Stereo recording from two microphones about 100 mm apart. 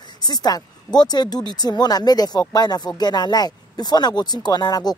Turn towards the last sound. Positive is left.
turn(degrees=40)  # may be behind; listen again after turning